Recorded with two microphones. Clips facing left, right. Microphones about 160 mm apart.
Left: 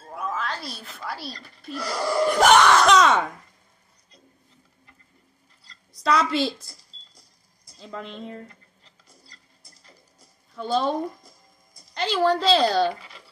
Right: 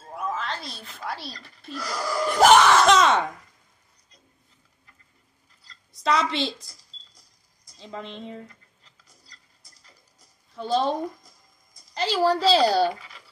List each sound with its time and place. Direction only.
0.4 s a woman's voice: 5° left (ahead or behind)
1.8 s speech: 30° left (ahead or behind)
2.2 s screaming: centre (ahead or behind)
5.6 s a sound: centre (ahead or behind)
7.7 s a woman's voice: centre (ahead or behind)
9.6 s a sound: 30° left (ahead or behind)
10.5 s a woman's voice: centre (ahead or behind)